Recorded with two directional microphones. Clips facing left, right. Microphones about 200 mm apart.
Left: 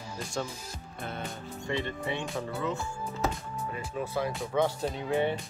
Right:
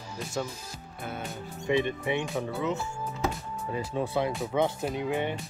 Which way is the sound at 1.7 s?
15° right (ahead or behind).